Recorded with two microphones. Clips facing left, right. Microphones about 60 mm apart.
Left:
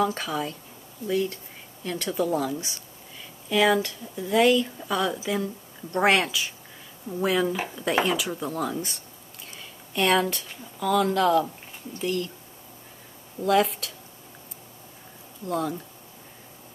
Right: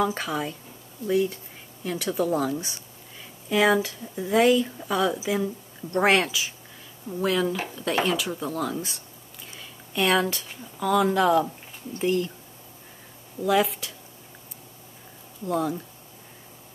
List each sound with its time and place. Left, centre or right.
0.0 s speech: centre
1.9 s speech: centre
4.7 s speech: centre
12.0 s speech: right
13.4 s speech: centre
15.4 s speech: centre